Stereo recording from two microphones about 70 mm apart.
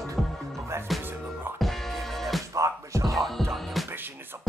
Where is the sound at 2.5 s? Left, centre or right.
Right.